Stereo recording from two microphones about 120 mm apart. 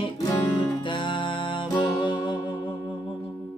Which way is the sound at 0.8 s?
40° left (ahead or behind).